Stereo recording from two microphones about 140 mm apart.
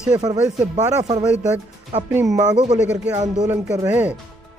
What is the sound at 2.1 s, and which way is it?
Speech, 20° right (ahead or behind).